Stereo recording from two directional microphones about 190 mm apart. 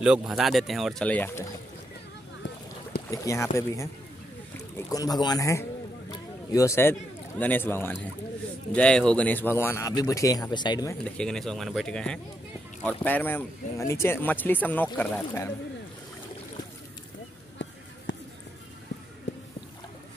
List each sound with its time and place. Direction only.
0.0 s speech: 5° right (ahead or behind); by 1.5 s 10° left (ahead or behind)
3.1 s speech: 15° left (ahead or behind)
11.1 s speech: 5° left (ahead or behind)
18.1 s music: 70° left (ahead or behind)
19.3 s a sound: 75° left (ahead or behind)